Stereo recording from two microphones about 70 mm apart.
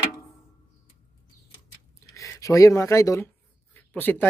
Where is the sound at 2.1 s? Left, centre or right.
Left.